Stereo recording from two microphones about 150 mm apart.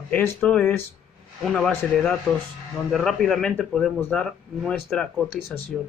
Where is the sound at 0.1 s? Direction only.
15° left (ahead or behind).